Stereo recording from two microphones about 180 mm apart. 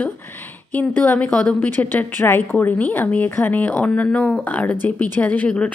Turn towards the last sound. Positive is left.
turn(degrees=10)  # may be behind; listen again after turning